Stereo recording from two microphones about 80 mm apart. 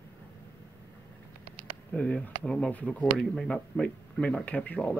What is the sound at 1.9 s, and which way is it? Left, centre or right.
Speech, centre.